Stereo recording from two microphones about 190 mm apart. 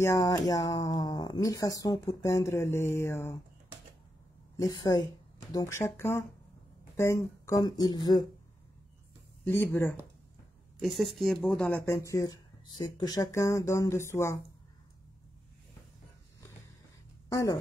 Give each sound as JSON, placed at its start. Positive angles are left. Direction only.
{"t": 0.0, "sound": "speech", "side_deg": 15}
{"t": 4.6, "sound": "speech", "side_deg": 20}
{"t": 9.4, "sound": "speech", "side_deg": 10}
{"t": 10.8, "sound": "speech", "side_deg": 0}
{"t": 17.3, "sound": "speech", "side_deg": 15}